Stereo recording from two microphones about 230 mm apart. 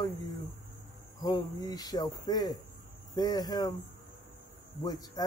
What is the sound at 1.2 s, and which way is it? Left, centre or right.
Speech, centre.